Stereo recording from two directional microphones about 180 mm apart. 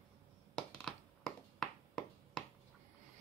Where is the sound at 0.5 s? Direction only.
Centre (ahead or behind).